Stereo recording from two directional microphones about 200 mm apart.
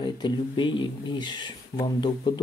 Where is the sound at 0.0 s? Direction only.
25° left (ahead or behind).